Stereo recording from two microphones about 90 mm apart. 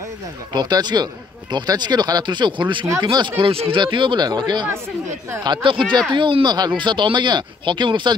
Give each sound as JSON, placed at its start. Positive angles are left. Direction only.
{"t": 0.5, "sound": "speech", "side_deg": -55}
{"t": 5.4, "sound": "speech", "side_deg": -65}
{"t": 6.1, "sound": "speech", "side_deg": -60}